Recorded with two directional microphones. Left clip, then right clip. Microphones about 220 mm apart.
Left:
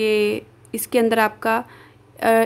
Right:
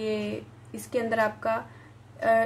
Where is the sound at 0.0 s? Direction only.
45° left (ahead or behind).